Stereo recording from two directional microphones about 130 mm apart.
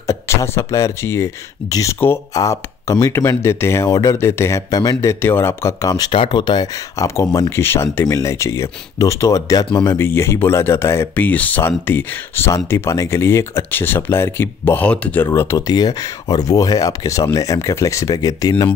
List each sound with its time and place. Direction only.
0.0 s speech: 20° left (ahead or behind)
5.2 s speech: 20° left (ahead or behind)
6.1 s speech: 40° left (ahead or behind); by 15.2 s 10° left (ahead or behind)
15.2 s speech: 25° left (ahead or behind)